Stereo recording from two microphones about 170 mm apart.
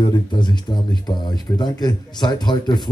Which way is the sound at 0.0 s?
25° left (ahead or behind).